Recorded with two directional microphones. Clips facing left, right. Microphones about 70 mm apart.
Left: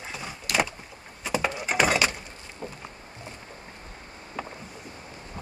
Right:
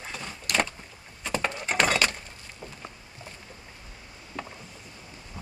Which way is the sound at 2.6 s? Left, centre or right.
Left.